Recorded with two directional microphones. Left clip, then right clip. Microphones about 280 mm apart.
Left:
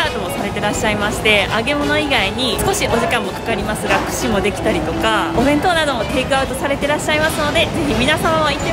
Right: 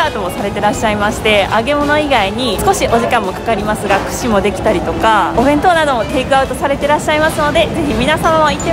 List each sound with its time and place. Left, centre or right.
0.7 s a woman's voice: centre
5.0 s a woman's voice: centre